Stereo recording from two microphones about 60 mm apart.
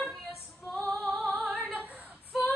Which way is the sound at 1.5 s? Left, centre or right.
Right.